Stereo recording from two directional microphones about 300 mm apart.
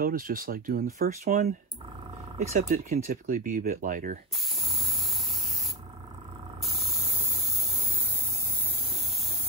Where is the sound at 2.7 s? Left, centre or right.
Right.